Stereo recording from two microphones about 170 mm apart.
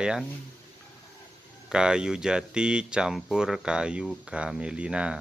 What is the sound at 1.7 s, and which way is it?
Speech, 5° right (ahead or behind).